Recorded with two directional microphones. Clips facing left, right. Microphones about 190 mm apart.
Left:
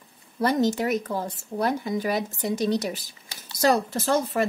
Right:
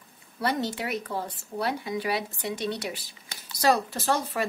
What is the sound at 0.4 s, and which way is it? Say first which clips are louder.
Speech: left 6 dB; 45° left (ahead or behind).